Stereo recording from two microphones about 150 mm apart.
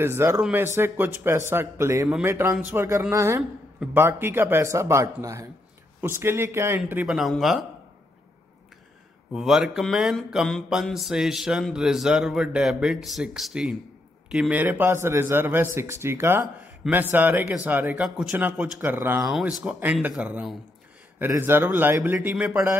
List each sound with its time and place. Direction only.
0.0 s speech: 15° right (ahead or behind)
7.1 s mantra: centre (ahead or behind)
9.3 s mantra: centre (ahead or behind)
14.3 s speech: 10° right (ahead or behind)
19.3 s speech: 5° right (ahead or behind)